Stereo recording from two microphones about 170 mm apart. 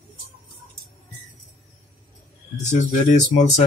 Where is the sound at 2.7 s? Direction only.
45° left (ahead or behind).